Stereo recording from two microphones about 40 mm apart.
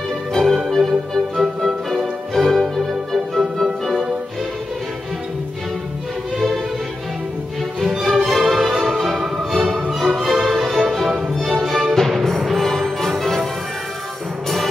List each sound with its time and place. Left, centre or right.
0.3 s music: centre
6.3 s music: centre
8.0 s music: centre
11.1 s music: right
11.8 s music: centre